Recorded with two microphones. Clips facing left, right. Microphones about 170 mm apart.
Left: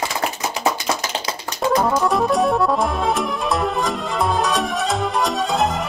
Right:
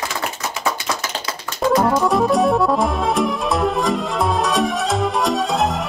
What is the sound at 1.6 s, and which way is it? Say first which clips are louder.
Music: right 2 dB; centre (ahead or behind).